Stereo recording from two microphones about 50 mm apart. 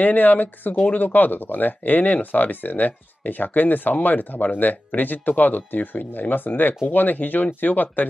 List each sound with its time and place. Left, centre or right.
0.0 s speech: left